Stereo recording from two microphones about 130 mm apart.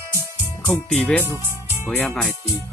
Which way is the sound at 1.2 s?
20° left (ahead or behind).